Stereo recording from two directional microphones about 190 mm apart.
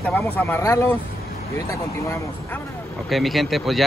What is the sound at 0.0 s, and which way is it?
Speech, 10° left (ahead or behind).